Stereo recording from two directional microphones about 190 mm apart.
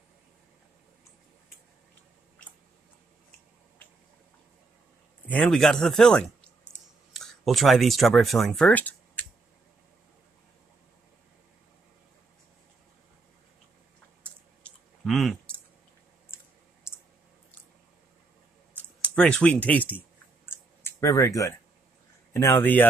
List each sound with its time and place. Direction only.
5.3 s speech: 5° left (ahead or behind)
14.6 s clicking: centre (ahead or behind)
18.7 s speech: 5° left (ahead or behind)
20.4 s clicking: 15° left (ahead or behind)
22.3 s speech: 15° left (ahead or behind)